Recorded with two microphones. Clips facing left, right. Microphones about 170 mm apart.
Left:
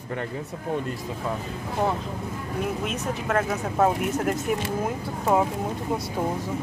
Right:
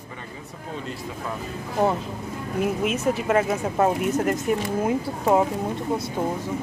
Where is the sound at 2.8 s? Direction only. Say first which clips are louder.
Right 5 dB; 5° right (ahead or behind).